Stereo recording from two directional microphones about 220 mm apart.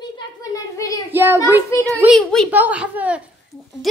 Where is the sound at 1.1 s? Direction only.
10° right (ahead or behind).